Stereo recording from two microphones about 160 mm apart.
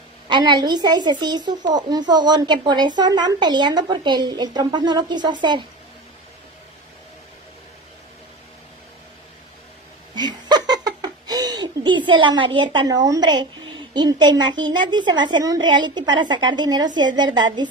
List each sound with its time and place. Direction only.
0.3 s speech: 25° right (ahead or behind)
10.1 s laughter: 25° right (ahead or behind)
12.1 s speech: 30° right (ahead or behind)